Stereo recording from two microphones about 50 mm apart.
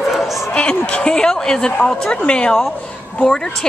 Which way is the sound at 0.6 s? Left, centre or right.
Centre.